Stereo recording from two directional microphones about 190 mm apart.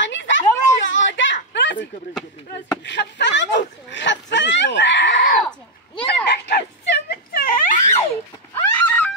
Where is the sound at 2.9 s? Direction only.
70° left (ahead or behind).